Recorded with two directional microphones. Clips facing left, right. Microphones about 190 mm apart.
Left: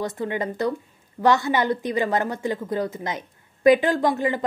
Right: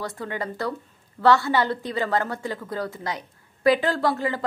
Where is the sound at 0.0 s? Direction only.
20° left (ahead or behind).